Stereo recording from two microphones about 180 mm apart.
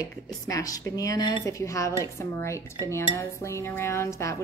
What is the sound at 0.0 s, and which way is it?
Speech, 20° left (ahead or behind).